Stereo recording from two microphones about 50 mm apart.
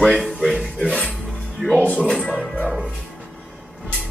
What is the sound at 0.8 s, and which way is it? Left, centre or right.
Music, left.